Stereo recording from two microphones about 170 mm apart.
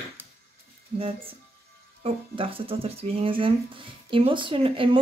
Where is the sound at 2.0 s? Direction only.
30° right (ahead or behind).